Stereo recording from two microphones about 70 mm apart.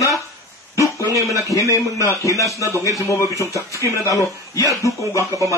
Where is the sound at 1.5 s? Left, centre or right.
Left.